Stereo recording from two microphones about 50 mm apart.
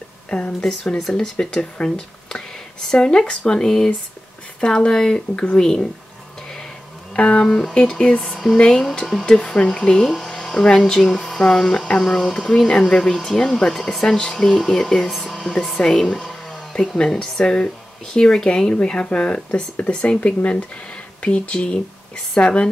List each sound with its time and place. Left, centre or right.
0.3 s speech: left
0.7 s speech: centre
7.2 s speech: left
15.0 s speech: centre; by 22.7 s left